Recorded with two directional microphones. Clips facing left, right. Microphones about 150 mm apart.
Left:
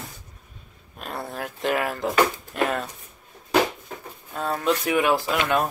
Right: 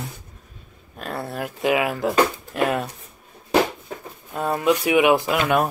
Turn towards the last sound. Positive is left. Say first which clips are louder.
# right 3 dB
turn(degrees=-5)  # may be behind; listen again after turning